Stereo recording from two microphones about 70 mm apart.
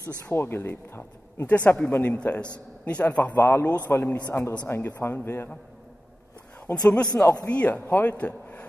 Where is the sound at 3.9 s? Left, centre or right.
Left.